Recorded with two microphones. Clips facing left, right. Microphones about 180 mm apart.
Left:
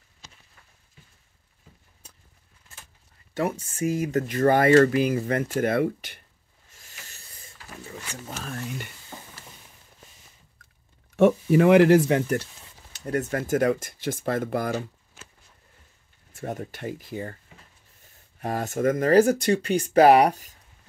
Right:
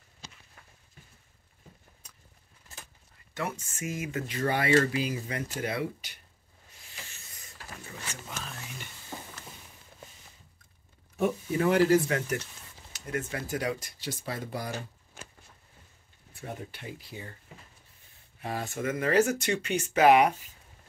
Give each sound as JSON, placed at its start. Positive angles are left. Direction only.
{"t": 3.3, "sound": "speech", "side_deg": 35}
{"t": 6.8, "sound": "a sound", "side_deg": 40}
{"t": 8.3, "sound": "a sound", "side_deg": 50}
{"t": 11.1, "sound": "speech", "side_deg": 90}
{"t": 12.9, "sound": "speech", "side_deg": 40}
{"t": 16.3, "sound": "speech", "side_deg": 45}
{"t": 18.4, "sound": "speech", "side_deg": 45}